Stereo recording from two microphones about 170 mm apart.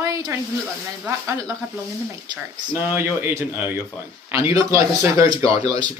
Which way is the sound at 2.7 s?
10° right (ahead or behind).